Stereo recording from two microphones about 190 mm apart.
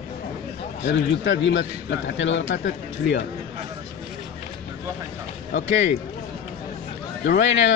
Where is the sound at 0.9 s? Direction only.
65° left (ahead or behind).